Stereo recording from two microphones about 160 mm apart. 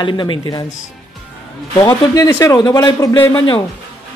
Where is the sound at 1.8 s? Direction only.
20° left (ahead or behind).